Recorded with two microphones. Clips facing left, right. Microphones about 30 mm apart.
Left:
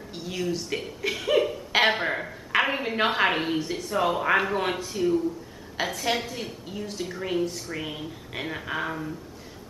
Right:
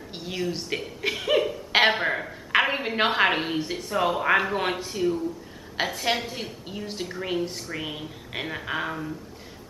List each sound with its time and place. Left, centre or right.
0.1 s a woman's voice: right
1.0 s cough: centre
1.9 s a sound: centre
2.6 s a woman's voice: centre
5.8 s a woman's voice: centre